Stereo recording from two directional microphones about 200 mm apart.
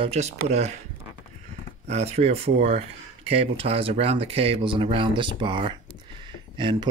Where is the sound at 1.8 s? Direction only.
35° right (ahead or behind).